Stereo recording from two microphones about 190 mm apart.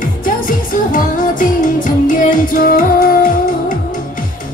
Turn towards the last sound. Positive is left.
turn(degrees=50)  # may be behind; listen again after turning